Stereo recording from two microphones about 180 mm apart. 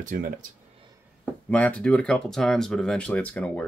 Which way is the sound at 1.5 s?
5° left (ahead or behind).